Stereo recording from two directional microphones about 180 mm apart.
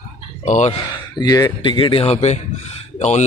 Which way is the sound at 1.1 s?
20° left (ahead or behind).